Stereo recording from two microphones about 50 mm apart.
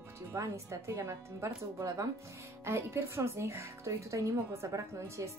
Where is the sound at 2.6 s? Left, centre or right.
Right.